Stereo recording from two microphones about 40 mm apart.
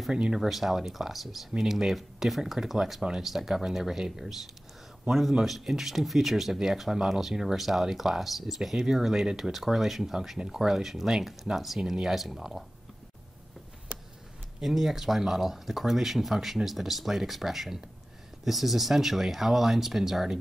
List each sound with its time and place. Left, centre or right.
0.1 s speech: centre
0.4 s speech: centre
5.4 s speech: centre
14.6 s speech: centre